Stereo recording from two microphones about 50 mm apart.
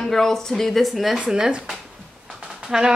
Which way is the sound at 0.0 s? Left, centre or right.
Centre.